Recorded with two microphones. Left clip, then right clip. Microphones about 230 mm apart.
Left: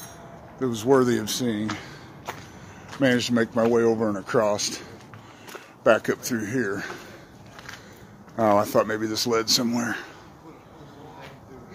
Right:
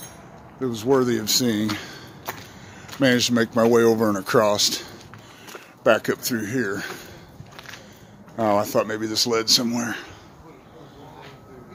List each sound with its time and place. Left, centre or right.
0.6 s speech: centre
1.2 s speech: centre
5.9 s speech: centre
8.4 s speech: centre